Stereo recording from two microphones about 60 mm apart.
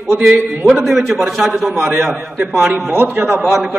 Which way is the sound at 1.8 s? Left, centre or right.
Right.